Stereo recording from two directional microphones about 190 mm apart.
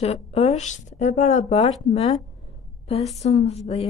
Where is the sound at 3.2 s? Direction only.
35° left (ahead or behind).